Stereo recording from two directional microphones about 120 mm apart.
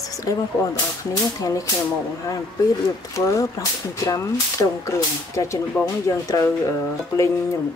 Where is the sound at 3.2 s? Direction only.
25° left (ahead or behind).